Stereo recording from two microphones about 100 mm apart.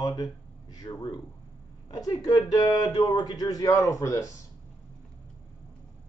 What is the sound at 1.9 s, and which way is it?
Speech, 40° left (ahead or behind).